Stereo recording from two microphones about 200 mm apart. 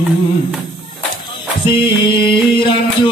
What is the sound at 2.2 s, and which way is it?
Music, 25° left (ahead or behind).